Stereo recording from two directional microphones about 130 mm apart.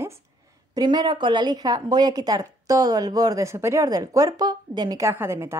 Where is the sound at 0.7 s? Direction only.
35° right (ahead or behind).